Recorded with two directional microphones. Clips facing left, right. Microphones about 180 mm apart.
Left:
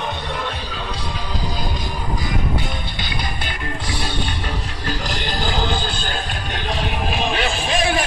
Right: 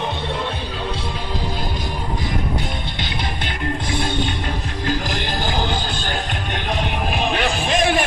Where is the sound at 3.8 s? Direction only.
50° right (ahead or behind).